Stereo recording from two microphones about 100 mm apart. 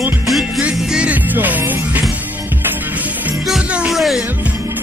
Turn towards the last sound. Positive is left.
turn(degrees=0)  # may be behind; listen again after turning